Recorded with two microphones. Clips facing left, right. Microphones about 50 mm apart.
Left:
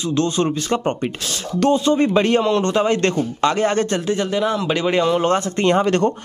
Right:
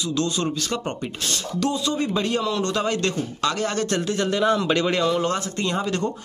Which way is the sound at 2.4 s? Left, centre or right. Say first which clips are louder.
Left 6 dB; left.